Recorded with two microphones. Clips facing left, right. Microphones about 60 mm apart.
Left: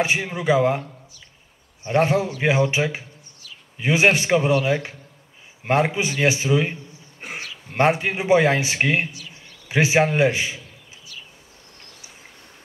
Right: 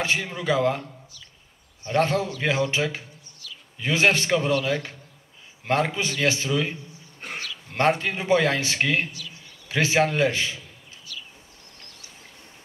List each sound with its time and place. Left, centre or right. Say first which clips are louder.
0.0 s a man's voice: left 4 dB; centre
1.9 s a man's voice: left 3 dB; centre
3.4 s a sound: right 2 dB; left
3.8 s a man's voice: left 3 dB; centre